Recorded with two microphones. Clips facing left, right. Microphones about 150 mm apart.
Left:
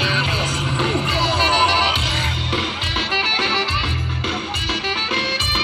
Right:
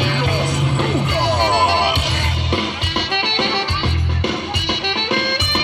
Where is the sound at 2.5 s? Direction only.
60° right (ahead or behind).